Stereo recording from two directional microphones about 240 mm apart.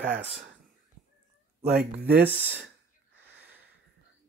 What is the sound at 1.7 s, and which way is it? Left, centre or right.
Speech, right.